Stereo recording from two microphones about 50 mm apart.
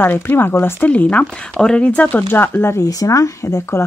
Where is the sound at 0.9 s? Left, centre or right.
Left.